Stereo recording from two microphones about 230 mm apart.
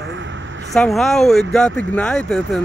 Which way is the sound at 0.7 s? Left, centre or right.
Centre.